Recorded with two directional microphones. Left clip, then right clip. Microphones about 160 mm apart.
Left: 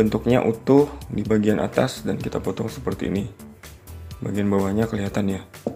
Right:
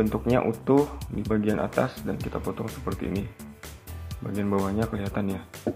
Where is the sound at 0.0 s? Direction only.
15° left (ahead or behind).